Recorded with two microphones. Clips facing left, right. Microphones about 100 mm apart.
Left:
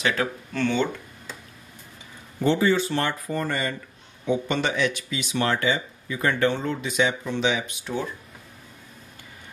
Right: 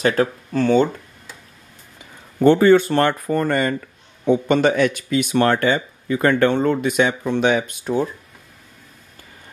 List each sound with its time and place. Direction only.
0.0 s speech: 40° right (ahead or behind)
2.4 s speech: 55° right (ahead or behind)